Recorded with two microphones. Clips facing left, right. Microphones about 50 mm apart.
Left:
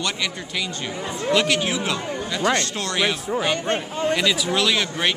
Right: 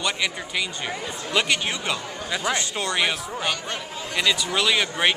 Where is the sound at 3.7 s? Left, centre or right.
Left.